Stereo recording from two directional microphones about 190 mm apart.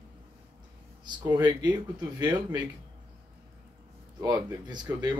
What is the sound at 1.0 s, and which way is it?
Speech, 25° right (ahead or behind).